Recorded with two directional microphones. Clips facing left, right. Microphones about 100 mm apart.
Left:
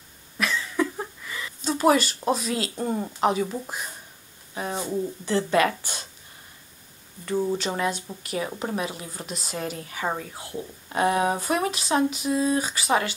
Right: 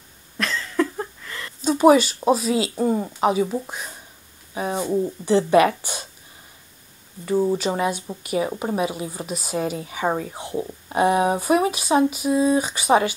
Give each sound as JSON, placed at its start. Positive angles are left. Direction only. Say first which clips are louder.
{"t": 0.4, "sound": "cough", "louder": "right 2 dB", "side_deg": 5}
{"t": 1.6, "sound": "speech", "louder": "right 6 dB", "side_deg": -10}
{"t": 4.6, "sound": "speech", "louder": "right 5 dB", "side_deg": -10}
{"t": 7.2, "sound": "speech", "louder": "right 5 dB", "side_deg": -10}
{"t": 10.0, "sound": "speech", "louder": "right 6 dB", "side_deg": -20}